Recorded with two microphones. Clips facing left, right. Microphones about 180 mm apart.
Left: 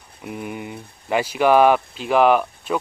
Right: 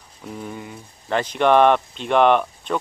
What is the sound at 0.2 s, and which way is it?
Speech, 10° left (ahead or behind).